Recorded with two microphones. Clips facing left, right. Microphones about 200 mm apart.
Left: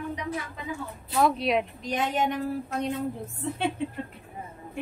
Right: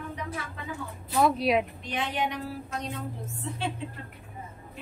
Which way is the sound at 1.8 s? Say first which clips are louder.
Left 4 dB; 45° left (ahead or behind).